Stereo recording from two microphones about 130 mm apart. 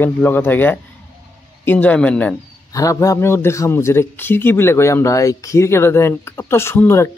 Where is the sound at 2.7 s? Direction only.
25° left (ahead or behind).